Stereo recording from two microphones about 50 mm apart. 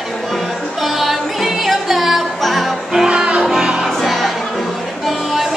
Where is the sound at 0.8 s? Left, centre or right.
Centre.